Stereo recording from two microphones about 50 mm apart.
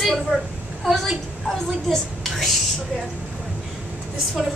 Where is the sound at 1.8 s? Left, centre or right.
Centre.